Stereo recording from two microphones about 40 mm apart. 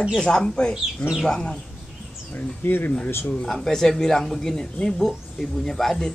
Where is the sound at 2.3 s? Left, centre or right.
Left.